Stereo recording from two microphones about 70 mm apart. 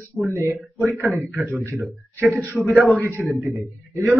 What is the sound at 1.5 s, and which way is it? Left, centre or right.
A man's voice, right.